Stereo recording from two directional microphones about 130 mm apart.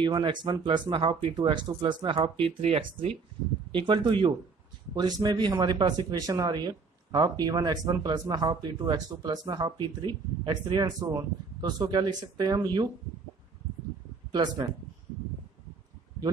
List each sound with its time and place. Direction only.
0.0 s speech: 35° right (ahead or behind)
14.3 s speech: 30° right (ahead or behind)